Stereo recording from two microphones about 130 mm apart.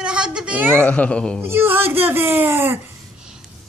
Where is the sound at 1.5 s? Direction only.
15° right (ahead or behind).